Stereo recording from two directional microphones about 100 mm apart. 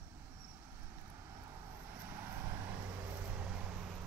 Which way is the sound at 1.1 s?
25° right (ahead or behind).